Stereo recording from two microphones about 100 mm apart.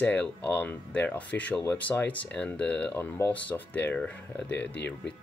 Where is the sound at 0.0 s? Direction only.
15° left (ahead or behind).